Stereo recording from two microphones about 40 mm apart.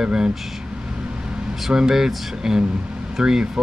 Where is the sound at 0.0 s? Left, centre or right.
Centre.